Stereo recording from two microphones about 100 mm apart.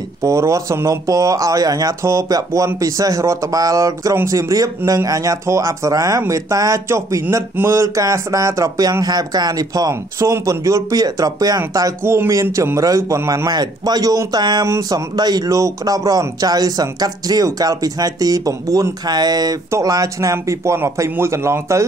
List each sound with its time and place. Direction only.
0.2 s speech: 30° right (ahead or behind)
12.0 s speech: 25° right (ahead or behind)